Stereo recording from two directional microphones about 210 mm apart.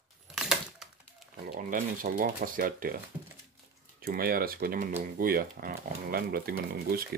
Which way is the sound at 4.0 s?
45° right (ahead or behind).